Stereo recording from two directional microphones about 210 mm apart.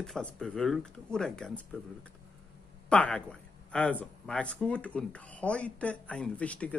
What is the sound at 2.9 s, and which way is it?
Speech, 5° left (ahead or behind).